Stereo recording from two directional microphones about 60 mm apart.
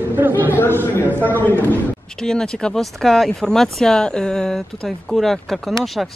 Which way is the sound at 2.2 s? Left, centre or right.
Centre.